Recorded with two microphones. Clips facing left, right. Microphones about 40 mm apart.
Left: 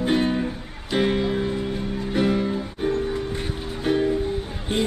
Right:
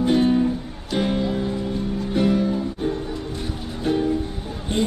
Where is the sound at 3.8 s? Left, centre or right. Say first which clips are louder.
Even; left.